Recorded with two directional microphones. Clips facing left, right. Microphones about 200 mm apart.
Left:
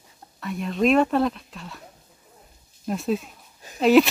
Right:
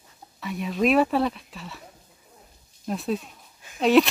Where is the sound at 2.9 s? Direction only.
Centre (ahead or behind).